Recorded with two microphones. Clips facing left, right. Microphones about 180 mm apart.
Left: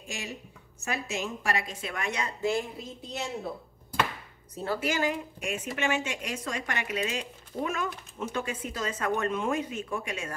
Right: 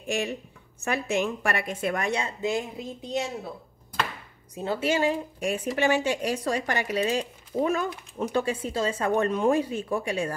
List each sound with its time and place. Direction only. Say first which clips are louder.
0.0 s a woman's voice: right 10 dB; 60° right (ahead or behind)
2.0 s speech: right 4 dB; 30° right (ahead or behind)
2.4 s speech: right 1 dB; 15° right (ahead or behind)
4.6 s a woman's voice: right 4 dB; 25° right (ahead or behind)